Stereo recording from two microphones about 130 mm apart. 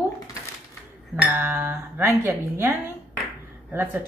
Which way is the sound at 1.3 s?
15° right (ahead or behind).